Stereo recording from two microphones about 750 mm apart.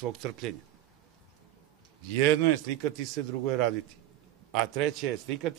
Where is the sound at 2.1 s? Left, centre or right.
Right.